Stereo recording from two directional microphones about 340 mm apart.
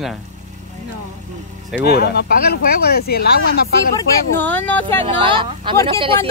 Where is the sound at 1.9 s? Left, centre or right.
Left.